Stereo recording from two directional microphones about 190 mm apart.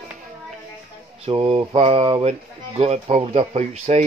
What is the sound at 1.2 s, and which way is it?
Speech, 30° right (ahead or behind).